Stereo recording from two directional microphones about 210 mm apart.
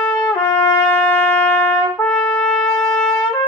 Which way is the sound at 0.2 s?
10° left (ahead or behind).